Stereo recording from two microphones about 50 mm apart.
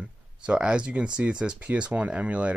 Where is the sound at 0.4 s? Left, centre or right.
Right.